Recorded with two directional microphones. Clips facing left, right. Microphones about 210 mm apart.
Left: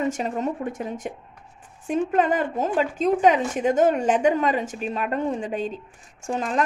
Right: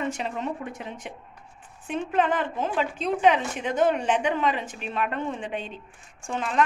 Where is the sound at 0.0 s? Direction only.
45° left (ahead or behind).